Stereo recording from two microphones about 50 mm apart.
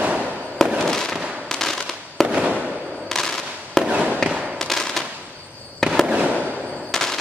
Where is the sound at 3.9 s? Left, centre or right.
Right.